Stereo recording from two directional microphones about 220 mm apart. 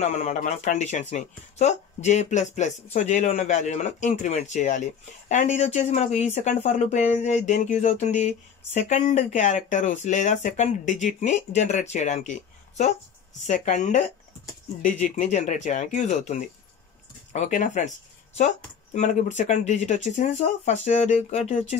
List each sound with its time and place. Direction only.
0.0 s speech: 35° left (ahead or behind)
18.9 s speech: 35° left (ahead or behind)